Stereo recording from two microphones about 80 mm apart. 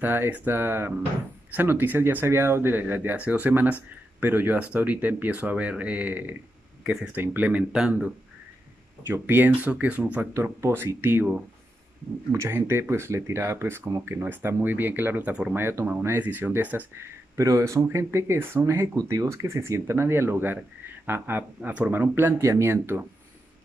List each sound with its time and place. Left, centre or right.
0.0 s speech: right
6.8 s a sound: centre
7.1 s speech: centre
9.0 s speech: right
10.3 s speech: right
12.3 s speech: right
15.5 s speech: right
17.4 s speech: right
18.9 s speech: right